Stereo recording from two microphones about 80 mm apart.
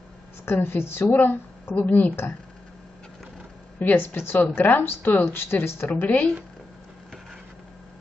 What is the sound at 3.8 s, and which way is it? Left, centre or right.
A woman's voice, left.